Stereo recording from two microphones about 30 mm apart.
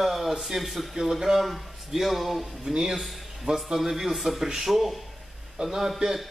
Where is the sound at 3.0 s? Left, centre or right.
Centre.